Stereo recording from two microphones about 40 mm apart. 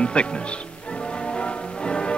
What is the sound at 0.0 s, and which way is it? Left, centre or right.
Speech, left.